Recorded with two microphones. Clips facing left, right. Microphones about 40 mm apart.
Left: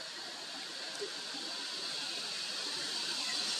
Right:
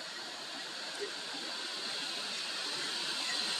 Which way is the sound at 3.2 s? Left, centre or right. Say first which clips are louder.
Right 2 dB; right.